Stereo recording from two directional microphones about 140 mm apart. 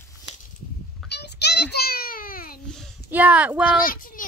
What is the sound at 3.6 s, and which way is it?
Speech, 90° left.